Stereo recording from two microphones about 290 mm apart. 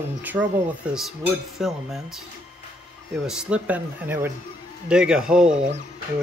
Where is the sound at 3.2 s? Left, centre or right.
Centre.